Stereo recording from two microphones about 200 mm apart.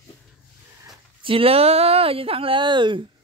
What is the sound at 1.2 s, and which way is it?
Speech, 25° right (ahead or behind).